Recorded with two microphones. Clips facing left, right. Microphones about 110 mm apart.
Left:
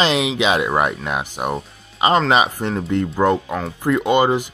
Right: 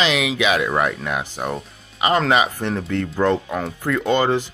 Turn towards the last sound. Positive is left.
turn(degrees=15)  # may be behind; listen again after turning